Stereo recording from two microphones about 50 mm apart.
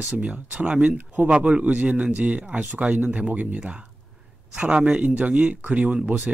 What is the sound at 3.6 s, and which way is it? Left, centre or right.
A man's voice, centre.